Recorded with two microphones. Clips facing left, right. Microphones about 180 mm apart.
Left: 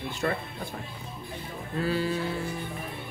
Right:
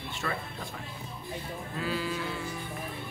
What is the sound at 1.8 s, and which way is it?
Speech, 40° left (ahead or behind).